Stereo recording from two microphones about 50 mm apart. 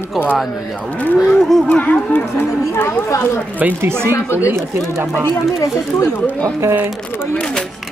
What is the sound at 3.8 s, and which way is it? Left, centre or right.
Speech, right.